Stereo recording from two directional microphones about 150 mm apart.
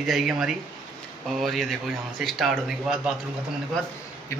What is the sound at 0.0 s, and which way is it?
Speech, centre (ahead or behind).